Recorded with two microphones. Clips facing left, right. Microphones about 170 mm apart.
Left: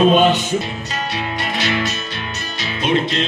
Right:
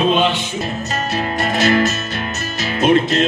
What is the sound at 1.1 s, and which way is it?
Music, 45° right (ahead or behind).